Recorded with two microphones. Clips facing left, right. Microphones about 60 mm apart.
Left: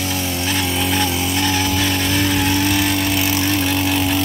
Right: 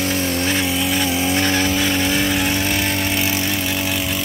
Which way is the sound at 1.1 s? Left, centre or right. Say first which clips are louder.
Right 1 dB; right.